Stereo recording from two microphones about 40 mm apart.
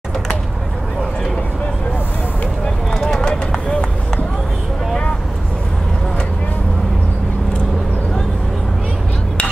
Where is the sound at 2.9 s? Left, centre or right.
Centre.